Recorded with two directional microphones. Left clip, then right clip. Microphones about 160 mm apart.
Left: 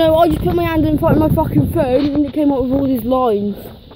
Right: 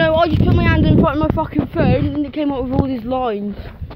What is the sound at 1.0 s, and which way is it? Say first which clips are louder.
Speech: left 3 dB; 15° left (ahead or behind).